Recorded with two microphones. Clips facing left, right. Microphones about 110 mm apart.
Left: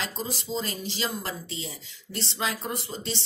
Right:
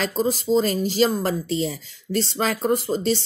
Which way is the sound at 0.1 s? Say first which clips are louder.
Right 12 dB; 45° right (ahead or behind).